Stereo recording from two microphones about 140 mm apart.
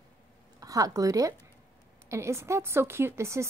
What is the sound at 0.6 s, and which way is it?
A woman's voice, 25° right (ahead or behind).